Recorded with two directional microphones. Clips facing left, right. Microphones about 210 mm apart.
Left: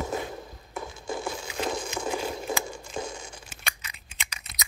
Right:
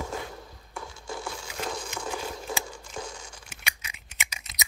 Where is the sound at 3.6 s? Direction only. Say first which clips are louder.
Even; 10° right (ahead or behind).